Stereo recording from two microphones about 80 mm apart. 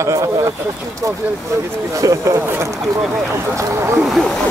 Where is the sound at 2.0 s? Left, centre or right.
Right.